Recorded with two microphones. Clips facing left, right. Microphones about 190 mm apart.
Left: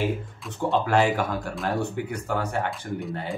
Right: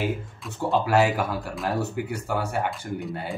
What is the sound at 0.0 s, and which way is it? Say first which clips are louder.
Speech: left 1 dB; 5° right (ahead or behind).